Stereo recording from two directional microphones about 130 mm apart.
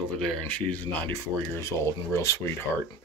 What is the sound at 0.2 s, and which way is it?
Speech, 10° left (ahead or behind).